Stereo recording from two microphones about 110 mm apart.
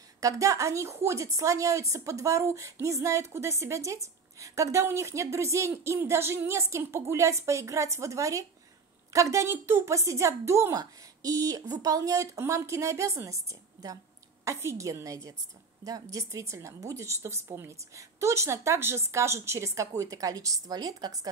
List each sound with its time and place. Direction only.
0.2 s a woman's voice: 30° right (ahead or behind)